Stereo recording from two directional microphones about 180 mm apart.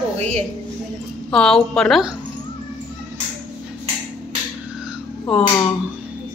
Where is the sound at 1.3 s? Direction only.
5° left (ahead or behind).